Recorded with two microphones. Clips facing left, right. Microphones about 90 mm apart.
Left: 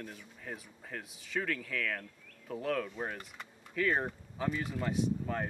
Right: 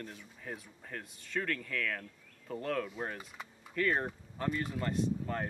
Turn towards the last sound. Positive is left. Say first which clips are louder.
# left 1 dB
turn(degrees=5)  # may be behind; listen again after turning